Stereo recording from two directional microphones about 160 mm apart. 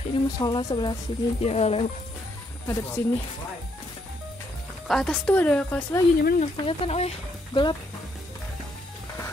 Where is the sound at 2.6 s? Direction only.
15° left (ahead or behind).